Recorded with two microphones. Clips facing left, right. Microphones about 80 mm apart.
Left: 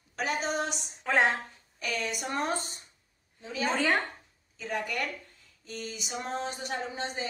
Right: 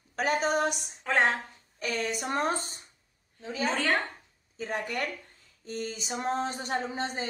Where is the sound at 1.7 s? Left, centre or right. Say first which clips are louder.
Right 2 dB; right.